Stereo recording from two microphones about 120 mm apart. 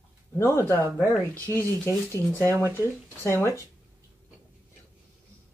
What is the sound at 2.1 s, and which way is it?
Speech, 20° left (ahead or behind).